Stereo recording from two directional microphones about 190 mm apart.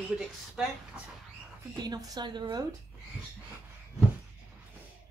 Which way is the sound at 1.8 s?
20° right (ahead or behind).